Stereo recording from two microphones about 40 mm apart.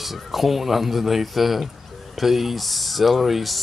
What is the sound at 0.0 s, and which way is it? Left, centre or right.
Speech, centre.